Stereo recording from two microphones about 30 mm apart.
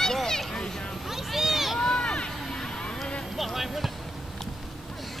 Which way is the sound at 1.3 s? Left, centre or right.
Centre.